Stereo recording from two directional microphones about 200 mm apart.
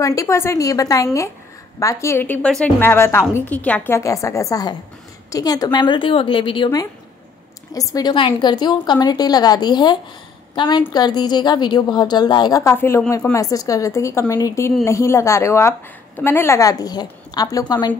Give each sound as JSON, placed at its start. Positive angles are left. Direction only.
{"t": 0.0, "sound": "a woman's voice", "side_deg": 15}